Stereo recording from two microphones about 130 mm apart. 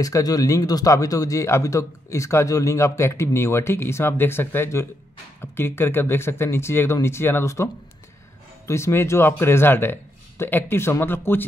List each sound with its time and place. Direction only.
0.0 s a man's voice: 30° left (ahead or behind)